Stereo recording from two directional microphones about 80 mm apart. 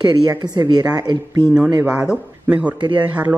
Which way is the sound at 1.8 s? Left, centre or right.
Centre.